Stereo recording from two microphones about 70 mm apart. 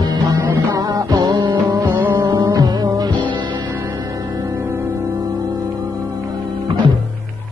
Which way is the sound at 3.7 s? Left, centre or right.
Right.